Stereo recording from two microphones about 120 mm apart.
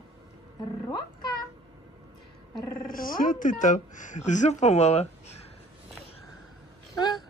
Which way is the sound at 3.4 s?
90° left.